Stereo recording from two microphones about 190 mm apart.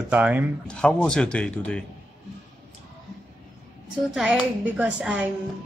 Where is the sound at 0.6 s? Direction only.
5° left (ahead or behind).